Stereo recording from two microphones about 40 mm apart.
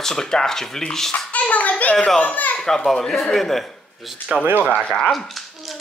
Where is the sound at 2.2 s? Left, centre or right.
Left.